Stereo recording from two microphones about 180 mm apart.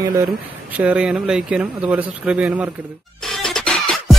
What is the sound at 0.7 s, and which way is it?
Speech, 5° right (ahead or behind).